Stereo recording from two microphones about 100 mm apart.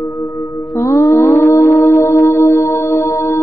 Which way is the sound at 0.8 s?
30° left (ahead or behind).